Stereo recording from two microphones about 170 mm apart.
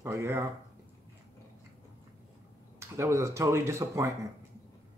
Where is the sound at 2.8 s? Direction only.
15° right (ahead or behind).